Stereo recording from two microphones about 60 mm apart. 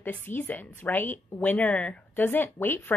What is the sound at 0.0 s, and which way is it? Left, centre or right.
A woman's voice, left.